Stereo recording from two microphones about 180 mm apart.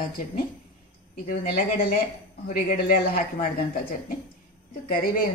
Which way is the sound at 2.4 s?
55° left (ahead or behind).